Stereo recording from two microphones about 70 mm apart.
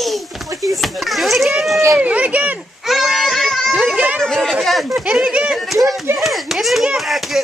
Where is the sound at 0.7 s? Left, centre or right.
Centre.